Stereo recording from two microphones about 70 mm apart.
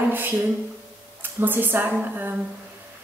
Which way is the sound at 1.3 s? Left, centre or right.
Right.